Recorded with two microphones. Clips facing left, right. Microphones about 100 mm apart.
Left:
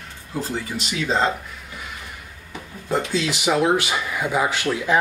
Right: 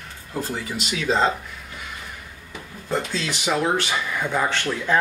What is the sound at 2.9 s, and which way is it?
Speech, 10° left (ahead or behind).